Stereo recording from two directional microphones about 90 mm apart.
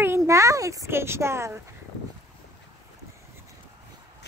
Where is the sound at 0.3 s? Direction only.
35° right (ahead or behind).